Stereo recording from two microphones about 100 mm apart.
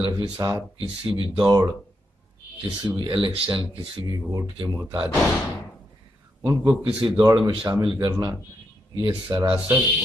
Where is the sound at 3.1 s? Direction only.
55° right (ahead or behind).